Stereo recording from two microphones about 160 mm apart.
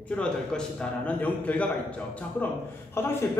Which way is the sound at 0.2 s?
5° left (ahead or behind).